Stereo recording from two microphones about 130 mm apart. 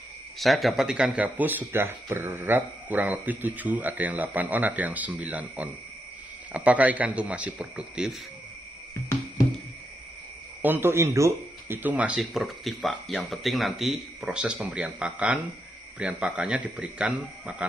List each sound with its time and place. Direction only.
0.4 s speech: centre (ahead or behind)
10.6 s speech: 15° right (ahead or behind)